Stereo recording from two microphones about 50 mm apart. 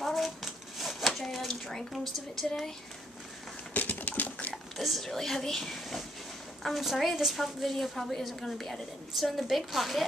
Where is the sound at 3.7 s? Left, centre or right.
Left.